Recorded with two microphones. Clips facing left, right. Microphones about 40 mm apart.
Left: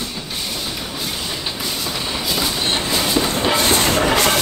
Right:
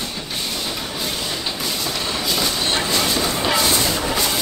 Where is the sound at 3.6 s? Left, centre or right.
Left.